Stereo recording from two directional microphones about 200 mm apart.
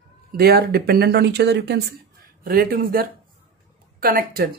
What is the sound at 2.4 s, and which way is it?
Speech, 45° right (ahead or behind).